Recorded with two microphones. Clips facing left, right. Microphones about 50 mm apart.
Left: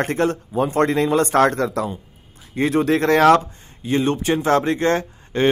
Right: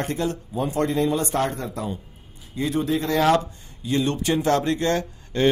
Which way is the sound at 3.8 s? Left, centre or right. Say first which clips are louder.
Left 3 dB; left.